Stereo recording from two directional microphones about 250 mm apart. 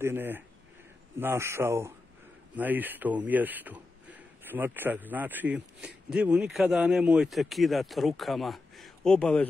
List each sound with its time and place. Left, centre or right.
0.0 s a man's voice: centre